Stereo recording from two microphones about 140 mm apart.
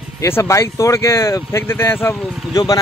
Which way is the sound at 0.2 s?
20° left (ahead or behind).